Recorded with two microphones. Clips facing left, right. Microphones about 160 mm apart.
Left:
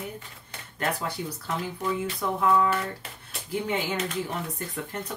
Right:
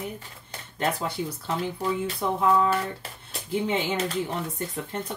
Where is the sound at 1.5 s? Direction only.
30° right (ahead or behind).